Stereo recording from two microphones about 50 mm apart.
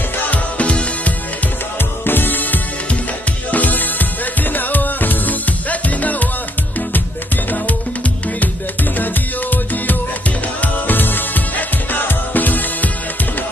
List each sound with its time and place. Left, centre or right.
0.3 s music: left
2.0 s music: left
8.9 s music: left